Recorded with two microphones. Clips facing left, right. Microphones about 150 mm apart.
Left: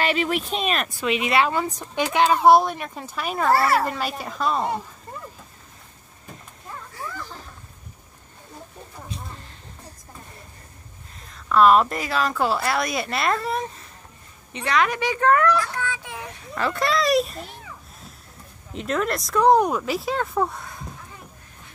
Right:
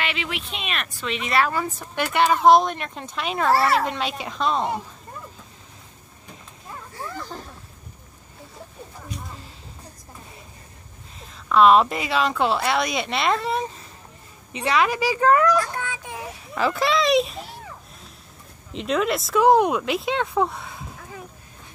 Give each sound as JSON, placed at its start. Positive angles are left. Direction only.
{"t": 0.0, "sound": "speech", "side_deg": 40}
{"t": 0.8, "sound": "speech", "side_deg": 5}
{"t": 1.3, "sound": "speech", "side_deg": 20}
{"t": 11.4, "sound": "a woman's voice", "side_deg": 0}
{"t": 14.8, "sound": "speech", "side_deg": -10}
{"t": 15.7, "sound": "child singing", "side_deg": -20}
{"t": 16.5, "sound": "a child's voice", "side_deg": 0}
{"t": 18.7, "sound": "speech", "side_deg": 0}